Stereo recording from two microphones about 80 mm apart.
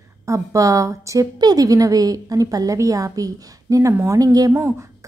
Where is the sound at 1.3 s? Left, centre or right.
Right.